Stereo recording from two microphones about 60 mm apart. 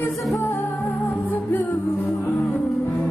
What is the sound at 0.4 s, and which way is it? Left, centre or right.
Music, left.